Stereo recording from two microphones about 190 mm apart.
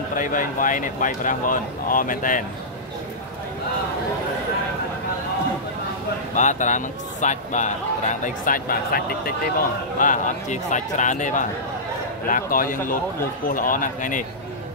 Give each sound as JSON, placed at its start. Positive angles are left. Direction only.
{"t": 0.2, "sound": "speech", "side_deg": 45}
{"t": 6.3, "sound": "speech", "side_deg": 40}